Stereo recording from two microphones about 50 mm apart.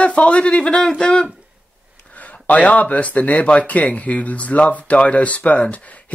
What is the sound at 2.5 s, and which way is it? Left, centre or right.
Speech, left.